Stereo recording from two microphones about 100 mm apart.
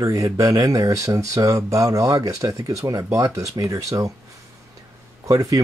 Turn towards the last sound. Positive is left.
turn(degrees=-35)  # may be behind; listen again after turning